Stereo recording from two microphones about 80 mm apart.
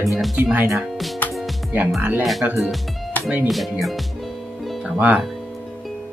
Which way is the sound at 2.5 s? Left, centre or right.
Centre.